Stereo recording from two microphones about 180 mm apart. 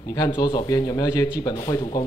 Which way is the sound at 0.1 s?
20° left (ahead or behind).